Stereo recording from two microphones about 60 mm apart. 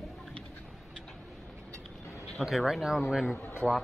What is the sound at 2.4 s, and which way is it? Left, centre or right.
Speech, centre.